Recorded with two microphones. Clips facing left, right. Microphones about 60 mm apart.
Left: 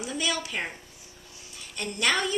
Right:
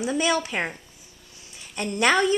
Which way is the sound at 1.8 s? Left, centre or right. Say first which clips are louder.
Right 6 dB; right.